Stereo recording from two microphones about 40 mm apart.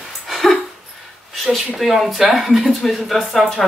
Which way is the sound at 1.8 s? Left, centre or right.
Centre.